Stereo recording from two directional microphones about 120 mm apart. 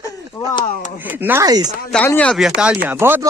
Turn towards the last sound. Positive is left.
turn(degrees=-20)  # may be behind; listen again after turning